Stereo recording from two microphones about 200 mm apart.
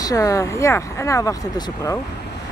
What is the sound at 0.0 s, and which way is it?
Speech, 15° left (ahead or behind).